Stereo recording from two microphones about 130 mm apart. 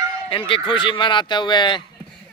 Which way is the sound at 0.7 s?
40° left (ahead or behind).